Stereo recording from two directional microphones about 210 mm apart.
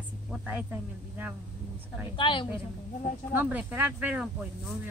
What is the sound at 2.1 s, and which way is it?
Speech, 25° left (ahead or behind).